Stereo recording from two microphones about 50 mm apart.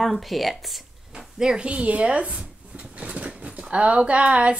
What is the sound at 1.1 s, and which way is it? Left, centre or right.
Speech, centre.